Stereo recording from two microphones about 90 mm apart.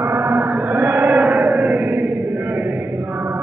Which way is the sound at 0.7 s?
20° right (ahead or behind).